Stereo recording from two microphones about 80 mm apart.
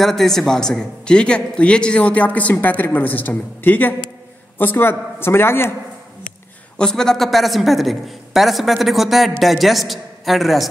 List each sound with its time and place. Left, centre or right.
0.0 s a man's voice: centre; by 5.8 s left
6.8 s a woman's voice: centre